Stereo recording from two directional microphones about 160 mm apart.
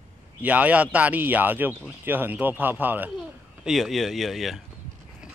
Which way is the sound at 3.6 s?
Centre (ahead or behind).